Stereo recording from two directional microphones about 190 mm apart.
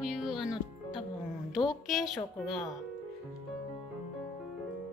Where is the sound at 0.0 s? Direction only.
5° right (ahead or behind).